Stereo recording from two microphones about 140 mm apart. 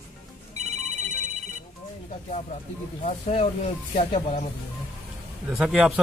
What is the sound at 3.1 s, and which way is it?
Speech, 50° left (ahead or behind).